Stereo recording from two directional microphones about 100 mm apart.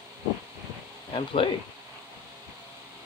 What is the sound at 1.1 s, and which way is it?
Speech, 60° left (ahead or behind).